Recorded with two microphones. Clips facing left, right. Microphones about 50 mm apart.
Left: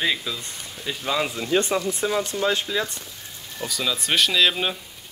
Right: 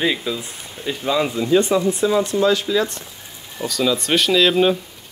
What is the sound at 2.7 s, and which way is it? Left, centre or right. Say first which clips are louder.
Speech: right 6 dB; centre.